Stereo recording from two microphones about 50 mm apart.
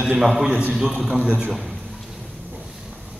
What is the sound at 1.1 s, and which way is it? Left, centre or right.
Speech, centre.